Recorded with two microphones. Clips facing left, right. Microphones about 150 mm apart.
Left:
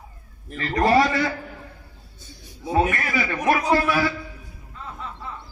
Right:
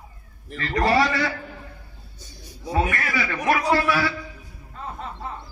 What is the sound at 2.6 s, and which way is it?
A man's voice, 25° left (ahead or behind).